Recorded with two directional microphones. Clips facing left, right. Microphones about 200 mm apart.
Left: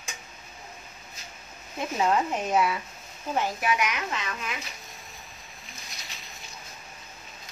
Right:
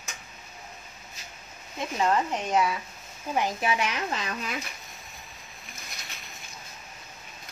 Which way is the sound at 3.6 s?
30° right (ahead or behind).